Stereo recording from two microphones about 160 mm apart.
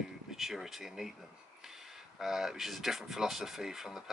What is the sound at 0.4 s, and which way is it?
Speech, centre (ahead or behind).